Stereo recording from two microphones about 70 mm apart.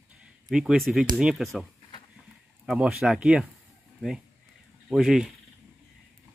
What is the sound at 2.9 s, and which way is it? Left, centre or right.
Speech, centre.